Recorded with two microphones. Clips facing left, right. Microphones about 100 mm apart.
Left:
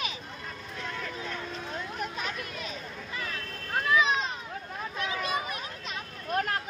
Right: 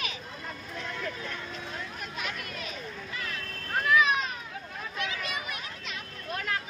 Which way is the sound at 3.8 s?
25° left (ahead or behind).